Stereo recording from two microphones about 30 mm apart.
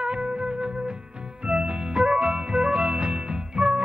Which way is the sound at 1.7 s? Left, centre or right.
Right.